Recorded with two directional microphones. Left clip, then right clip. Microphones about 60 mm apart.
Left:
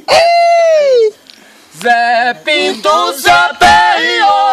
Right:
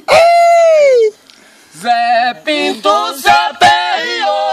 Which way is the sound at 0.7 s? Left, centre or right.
Centre.